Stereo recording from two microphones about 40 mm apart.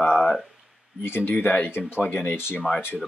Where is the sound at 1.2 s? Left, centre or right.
Left.